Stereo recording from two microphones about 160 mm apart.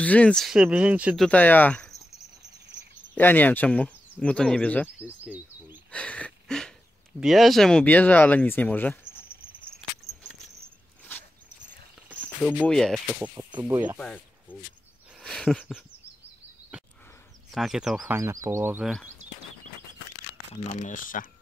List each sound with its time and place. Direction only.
0.0 s speech: 10° left (ahead or behind); by 1.2 s 5° right (ahead or behind)
1.2 s speech: 10° left (ahead or behind)
3.2 s speech: 10° left (ahead or behind)
5.0 s a sound: 10° right (ahead or behind)
5.9 s a sound: 5° left (ahead or behind)
7.2 s speech: centre (ahead or behind)
12.6 s speech: 5° left (ahead or behind)
15.1 s a sound: centre (ahead or behind)
17.5 s speech: centre (ahead or behind)
18.1 s speech: 20° right (ahead or behind)
20.7 s speech: 55° left (ahead or behind)